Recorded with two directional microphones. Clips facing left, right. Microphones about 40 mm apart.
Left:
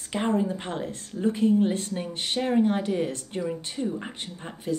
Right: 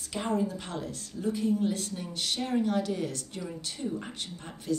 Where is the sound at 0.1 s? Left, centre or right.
Left.